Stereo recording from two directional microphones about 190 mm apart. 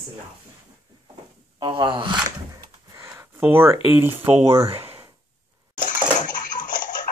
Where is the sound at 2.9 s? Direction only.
15° right (ahead or behind).